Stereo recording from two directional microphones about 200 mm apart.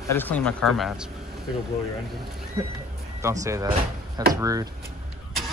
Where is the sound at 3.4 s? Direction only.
15° right (ahead or behind).